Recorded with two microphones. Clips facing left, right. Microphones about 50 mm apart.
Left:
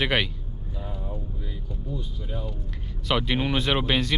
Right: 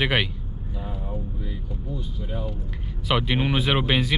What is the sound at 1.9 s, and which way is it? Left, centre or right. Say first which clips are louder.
Speech: right 1 dB; centre.